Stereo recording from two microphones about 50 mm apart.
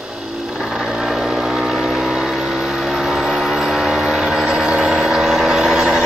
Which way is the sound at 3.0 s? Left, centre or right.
Centre.